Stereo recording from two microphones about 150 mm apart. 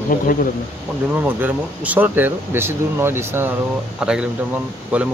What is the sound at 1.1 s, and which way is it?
Speech, 10° right (ahead or behind).